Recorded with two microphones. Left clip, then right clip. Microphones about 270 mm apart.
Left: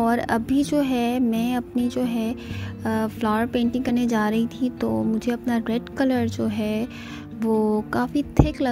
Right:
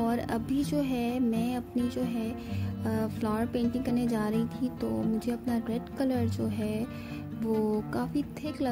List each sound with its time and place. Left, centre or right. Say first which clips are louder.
0.0 s a woman's voice: left 9 dB; centre